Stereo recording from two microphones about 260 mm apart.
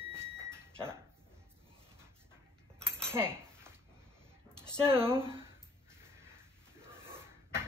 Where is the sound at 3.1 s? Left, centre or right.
Centre.